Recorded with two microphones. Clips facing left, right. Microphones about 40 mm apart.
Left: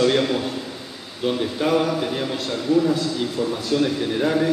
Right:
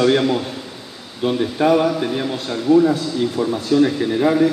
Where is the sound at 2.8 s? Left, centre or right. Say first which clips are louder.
Right 4 dB; right.